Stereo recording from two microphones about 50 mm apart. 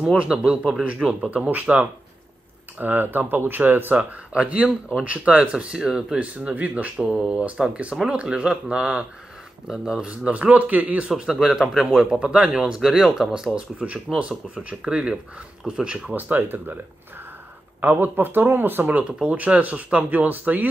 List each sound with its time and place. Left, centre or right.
0.0 s speech: right
1.4 s speech: right
2.8 s speech: right
3.9 s speech: right
6.1 s speech: right
10.1 s speech: right
11.1 s speech: centre
13.3 s speech: centre
16.2 s speech: right
19.2 s speech: right